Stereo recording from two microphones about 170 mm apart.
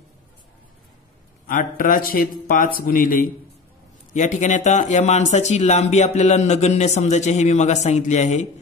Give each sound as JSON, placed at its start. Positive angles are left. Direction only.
{"t": 1.5, "sound": "a man's voice", "side_deg": 55}